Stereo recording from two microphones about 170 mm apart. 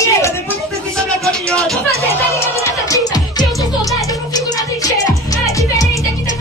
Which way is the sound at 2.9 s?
20° left (ahead or behind).